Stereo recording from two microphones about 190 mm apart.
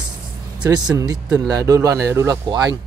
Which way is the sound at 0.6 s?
20° right (ahead or behind).